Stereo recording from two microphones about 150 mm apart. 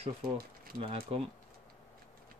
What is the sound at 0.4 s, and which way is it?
Speech, 75° right (ahead or behind).